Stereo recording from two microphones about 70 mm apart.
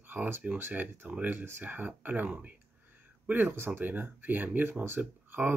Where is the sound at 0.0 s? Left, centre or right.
Right.